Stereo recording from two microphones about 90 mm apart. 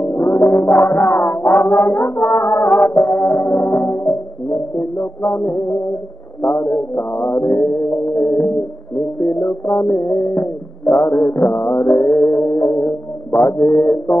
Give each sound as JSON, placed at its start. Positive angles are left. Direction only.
{"t": 0.2, "sound": "music", "side_deg": 25}
{"t": 0.5, "sound": "music", "side_deg": 0}
{"t": 0.7, "sound": "music", "side_deg": 35}
{"t": 1.1, "sound": "music", "side_deg": 25}
{"t": 2.6, "sound": "music", "side_deg": 0}
{"t": 3.1, "sound": "music", "side_deg": 25}